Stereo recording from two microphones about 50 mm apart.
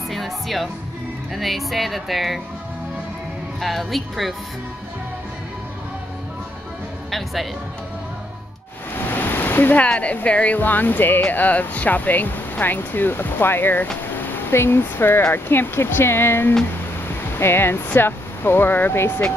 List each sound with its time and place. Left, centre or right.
0.1 s music: centre
1.3 s a woman's voice: centre
3.6 s a woman's voice: centre
7.1 s music: centre
8.9 s a sound: left
9.8 s speech: left
17.1 s a sound: left
17.9 s speech: left